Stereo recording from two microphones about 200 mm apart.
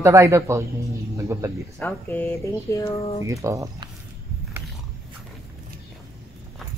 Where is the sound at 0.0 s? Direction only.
15° right (ahead or behind).